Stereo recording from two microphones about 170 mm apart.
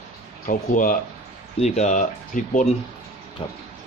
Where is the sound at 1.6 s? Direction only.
40° left (ahead or behind).